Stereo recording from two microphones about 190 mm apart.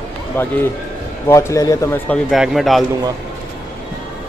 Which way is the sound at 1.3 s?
15° left (ahead or behind).